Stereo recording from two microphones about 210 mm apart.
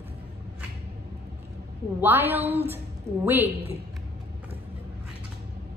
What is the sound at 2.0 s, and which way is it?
Speech, 10° right (ahead or behind).